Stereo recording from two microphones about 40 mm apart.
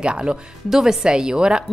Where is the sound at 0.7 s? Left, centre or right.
Centre.